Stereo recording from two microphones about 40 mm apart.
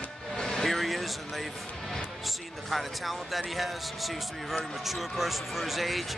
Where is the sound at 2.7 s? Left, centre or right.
Centre.